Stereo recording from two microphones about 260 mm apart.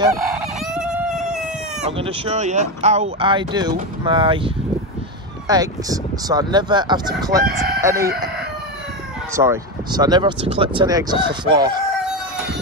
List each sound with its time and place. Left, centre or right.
0.2 s chicken: centre
1.9 s speech: right
5.5 s speech: centre
9.3 s speech: centre